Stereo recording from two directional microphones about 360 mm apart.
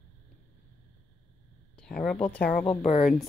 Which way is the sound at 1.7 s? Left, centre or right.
Centre.